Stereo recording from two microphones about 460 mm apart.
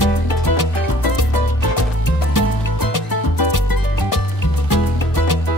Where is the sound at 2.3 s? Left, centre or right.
Left.